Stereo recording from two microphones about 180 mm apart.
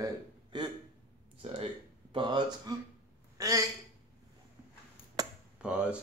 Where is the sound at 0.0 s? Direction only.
25° right (ahead or behind).